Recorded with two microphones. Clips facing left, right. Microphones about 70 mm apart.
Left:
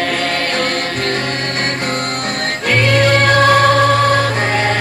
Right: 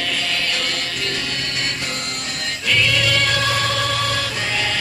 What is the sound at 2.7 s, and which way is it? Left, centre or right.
Music, left.